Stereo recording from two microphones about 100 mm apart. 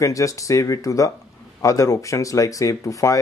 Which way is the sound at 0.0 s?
35° left (ahead or behind).